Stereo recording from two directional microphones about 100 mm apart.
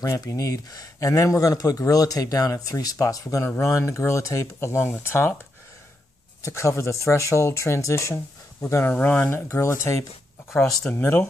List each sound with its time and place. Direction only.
0.0 s speech: 35° left (ahead or behind)
6.4 s speech: 30° left (ahead or behind)
8.9 s speech: 15° left (ahead or behind)